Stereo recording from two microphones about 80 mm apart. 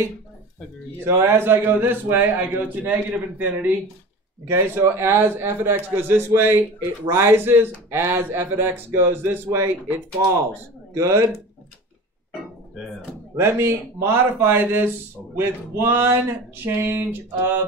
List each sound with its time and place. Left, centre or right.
1.0 s a man's voice: right
13.4 s a man's voice: right